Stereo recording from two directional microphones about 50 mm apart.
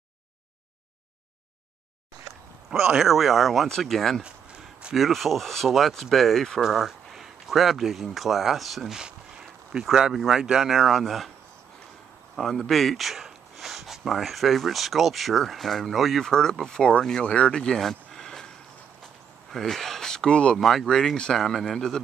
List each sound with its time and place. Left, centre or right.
2.7 s speech: centre
12.4 s speech: centre
17.2 s speech: left
17.6 s a sound: centre
19.5 s speech: centre
20.2 s speech: left
20.5 s speech: centre